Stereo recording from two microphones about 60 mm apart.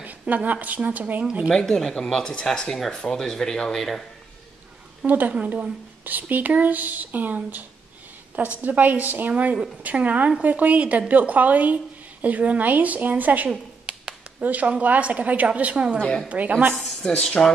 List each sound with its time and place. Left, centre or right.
0.3 s a woman's voice: right
1.5 s speech: centre
5.0 s a woman's voice: right
17.0 s speech: centre